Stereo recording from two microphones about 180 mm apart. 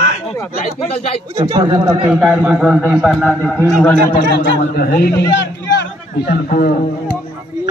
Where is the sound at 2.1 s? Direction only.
5° right (ahead or behind); by 4.1 s 15° left (ahead or behind).